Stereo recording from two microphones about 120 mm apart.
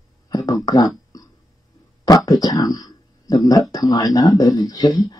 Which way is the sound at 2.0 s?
30° left (ahead or behind).